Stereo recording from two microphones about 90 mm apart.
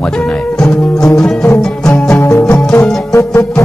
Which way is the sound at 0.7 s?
5° left (ahead or behind).